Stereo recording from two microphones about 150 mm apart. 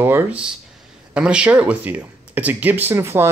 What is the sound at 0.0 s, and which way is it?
Speech, 15° right (ahead or behind).